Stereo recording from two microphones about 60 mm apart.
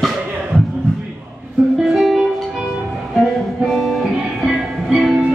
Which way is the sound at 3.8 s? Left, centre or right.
Centre.